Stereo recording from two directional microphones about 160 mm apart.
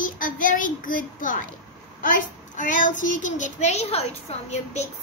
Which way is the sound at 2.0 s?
55° left (ahead or behind).